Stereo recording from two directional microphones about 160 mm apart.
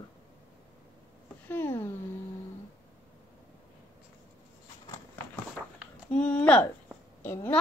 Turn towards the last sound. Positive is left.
turn(degrees=15)  # may be behind; listen again after turning